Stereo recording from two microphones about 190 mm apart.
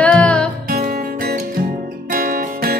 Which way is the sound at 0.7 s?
50° right (ahead or behind).